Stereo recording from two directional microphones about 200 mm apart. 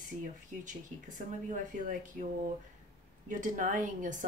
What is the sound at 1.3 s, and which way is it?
Speech, 40° right (ahead or behind).